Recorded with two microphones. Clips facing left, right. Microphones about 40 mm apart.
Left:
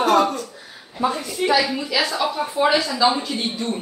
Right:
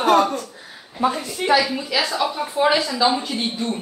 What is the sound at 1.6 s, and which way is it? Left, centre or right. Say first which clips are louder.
Speech: even; centre.